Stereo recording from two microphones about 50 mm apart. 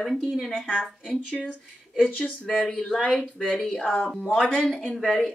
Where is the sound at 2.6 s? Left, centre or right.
Centre.